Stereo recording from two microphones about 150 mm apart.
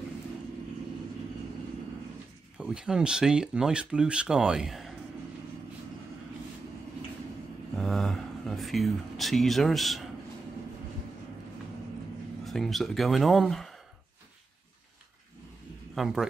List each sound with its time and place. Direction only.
2.5 s speech: 5° right (ahead or behind)
7.7 s a sound: 5° left (ahead or behind)
12.4 s speech: centre (ahead or behind)
15.9 s speech: centre (ahead or behind)